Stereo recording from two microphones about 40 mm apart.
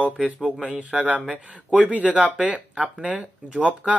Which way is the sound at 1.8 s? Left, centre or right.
Right.